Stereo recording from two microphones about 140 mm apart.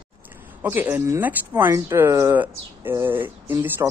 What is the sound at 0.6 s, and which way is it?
Speech, 15° right (ahead or behind).